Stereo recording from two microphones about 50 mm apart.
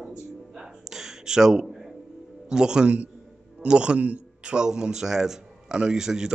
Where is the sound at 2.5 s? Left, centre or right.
Centre.